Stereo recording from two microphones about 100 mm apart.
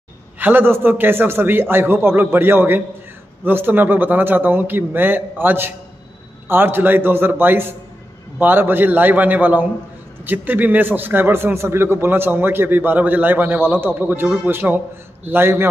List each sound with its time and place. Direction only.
0.4 s a man's voice: 20° right (ahead or behind)